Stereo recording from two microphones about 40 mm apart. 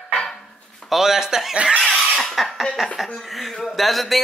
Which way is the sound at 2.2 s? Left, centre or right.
Centre.